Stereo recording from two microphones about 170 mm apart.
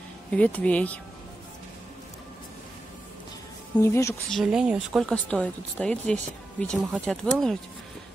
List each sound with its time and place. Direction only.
0.3 s speech: 10° left (ahead or behind)
3.8 s speech: 15° left (ahead or behind)
4.3 s speech: centre (ahead or behind)
5.0 s speech: 5° left (ahead or behind)